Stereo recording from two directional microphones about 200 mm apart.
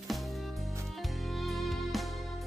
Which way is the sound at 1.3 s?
Centre (ahead or behind).